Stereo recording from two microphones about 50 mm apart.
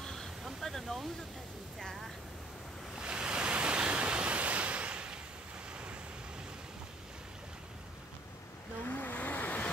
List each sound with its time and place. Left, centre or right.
0.0 s a sound: centre
0.6 s waterfall: centre
3.0 s waves: centre
8.8 s vehicle: left